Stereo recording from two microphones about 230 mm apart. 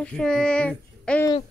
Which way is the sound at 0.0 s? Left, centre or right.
Centre.